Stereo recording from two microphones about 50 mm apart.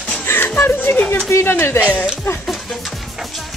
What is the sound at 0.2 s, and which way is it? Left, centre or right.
Music, left.